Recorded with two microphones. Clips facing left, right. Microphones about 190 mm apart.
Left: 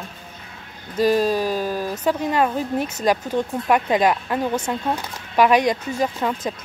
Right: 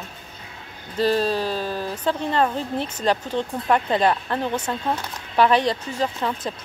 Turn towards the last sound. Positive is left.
turn(degrees=10)  # may be behind; listen again after turning